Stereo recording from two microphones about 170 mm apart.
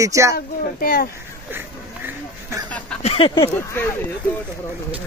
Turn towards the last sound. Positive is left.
turn(degrees=10)  # may be behind; listen again after turning